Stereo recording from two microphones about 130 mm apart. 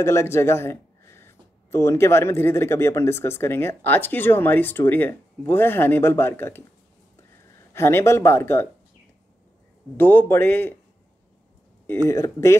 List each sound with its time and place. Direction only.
0.0 s speech: 20° left (ahead or behind)
7.7 s speech: 20° left (ahead or behind)
9.9 s speech: 15° left (ahead or behind)
11.8 s speech: 20° left (ahead or behind)